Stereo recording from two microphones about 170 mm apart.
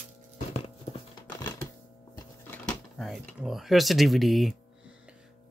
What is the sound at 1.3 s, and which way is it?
Typewriter, 25° left (ahead or behind).